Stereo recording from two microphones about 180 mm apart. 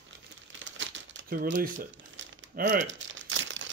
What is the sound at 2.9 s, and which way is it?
Crumpling, 90° right.